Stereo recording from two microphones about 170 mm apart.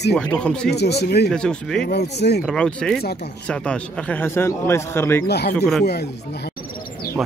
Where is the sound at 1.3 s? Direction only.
5° left (ahead or behind).